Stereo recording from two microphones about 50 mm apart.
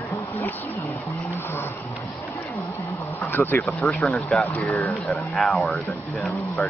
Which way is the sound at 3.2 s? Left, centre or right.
Left.